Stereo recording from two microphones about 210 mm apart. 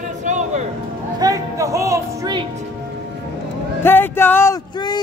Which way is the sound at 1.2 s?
15° right (ahead or behind).